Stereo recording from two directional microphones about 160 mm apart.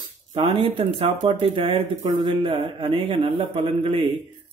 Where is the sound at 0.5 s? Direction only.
30° right (ahead or behind).